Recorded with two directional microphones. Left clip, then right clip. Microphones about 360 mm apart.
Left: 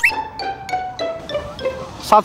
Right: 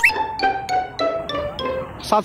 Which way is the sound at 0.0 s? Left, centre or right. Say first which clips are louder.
Right 1 dB; centre.